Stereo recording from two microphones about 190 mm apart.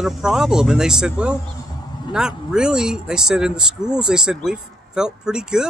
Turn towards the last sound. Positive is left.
turn(degrees=-5)  # may be behind; listen again after turning